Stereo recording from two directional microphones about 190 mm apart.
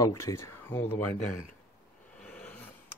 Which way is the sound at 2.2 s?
10° left (ahead or behind).